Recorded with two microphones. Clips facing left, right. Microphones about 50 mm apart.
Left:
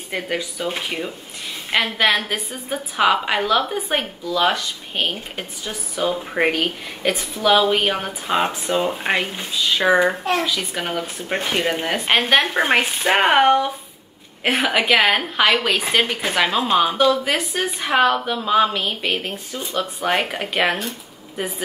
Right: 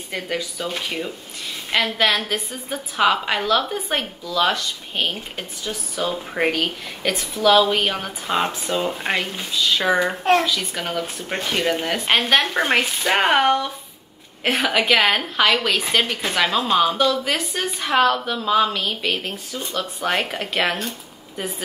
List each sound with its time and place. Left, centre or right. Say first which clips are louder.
0.1 s a woman's voice: left 2 dB; centre